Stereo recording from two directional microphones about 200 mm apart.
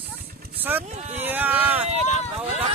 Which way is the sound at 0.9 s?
35° right (ahead or behind).